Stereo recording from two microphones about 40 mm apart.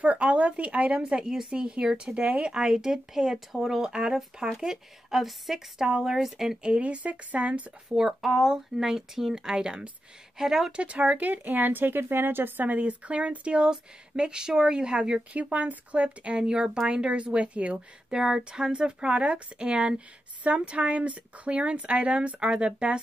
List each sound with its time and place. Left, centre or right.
0.0 s speech: right
2.2 s speech: right
2.5 s speech: centre
6.6 s speech: right
7.9 s speech: centre
11.0 s a woman's voice: right
12.6 s speech: right
15.3 s speech: right
18.1 s speech: centre